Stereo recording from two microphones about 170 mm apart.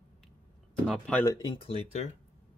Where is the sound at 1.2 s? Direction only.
25° left (ahead or behind).